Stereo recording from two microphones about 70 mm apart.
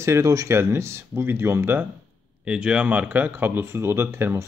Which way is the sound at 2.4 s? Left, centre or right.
Centre.